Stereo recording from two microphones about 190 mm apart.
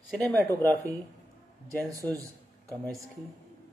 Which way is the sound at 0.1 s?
Centre (ahead or behind).